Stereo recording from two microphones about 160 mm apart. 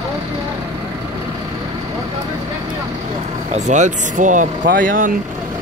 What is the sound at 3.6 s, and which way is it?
Speech, 45° right (ahead or behind).